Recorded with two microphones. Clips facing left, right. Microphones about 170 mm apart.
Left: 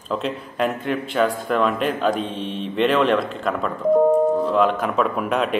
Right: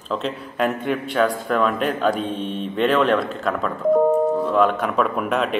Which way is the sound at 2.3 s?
45° right (ahead or behind).